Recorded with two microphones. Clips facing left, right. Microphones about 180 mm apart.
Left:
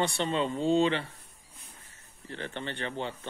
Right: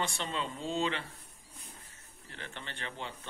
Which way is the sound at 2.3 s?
30° left (ahead or behind).